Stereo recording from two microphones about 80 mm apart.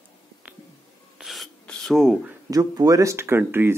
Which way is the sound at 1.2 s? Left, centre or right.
Centre.